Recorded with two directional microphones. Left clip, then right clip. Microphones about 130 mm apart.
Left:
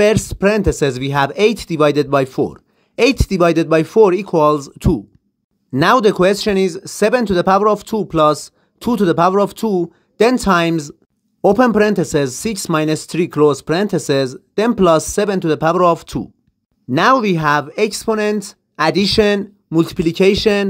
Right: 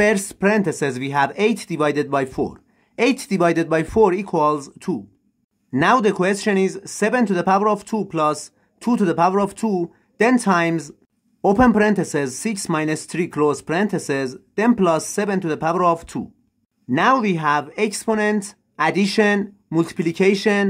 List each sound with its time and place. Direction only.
0.0 s speech: 30° left (ahead or behind)